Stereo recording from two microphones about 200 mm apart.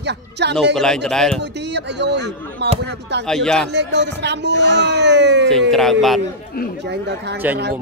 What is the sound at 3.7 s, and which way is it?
Speech, 60° right (ahead or behind).